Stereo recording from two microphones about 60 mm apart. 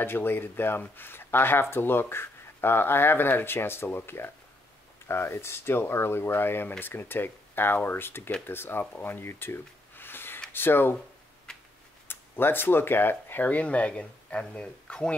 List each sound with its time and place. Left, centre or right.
0.0 s speech: left
12.1 s speech: left; by 15.1 s centre